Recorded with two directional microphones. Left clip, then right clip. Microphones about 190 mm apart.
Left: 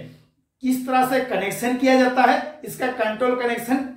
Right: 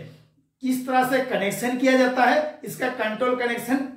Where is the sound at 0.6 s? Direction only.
15° left (ahead or behind).